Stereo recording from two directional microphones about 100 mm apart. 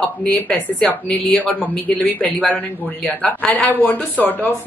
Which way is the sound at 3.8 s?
20° left (ahead or behind).